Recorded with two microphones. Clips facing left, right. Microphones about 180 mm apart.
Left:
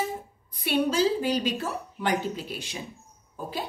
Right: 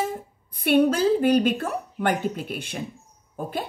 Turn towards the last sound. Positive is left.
turn(degrees=-55)  # may be behind; listen again after turning